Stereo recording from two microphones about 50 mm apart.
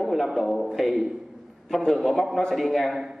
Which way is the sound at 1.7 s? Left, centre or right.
Centre.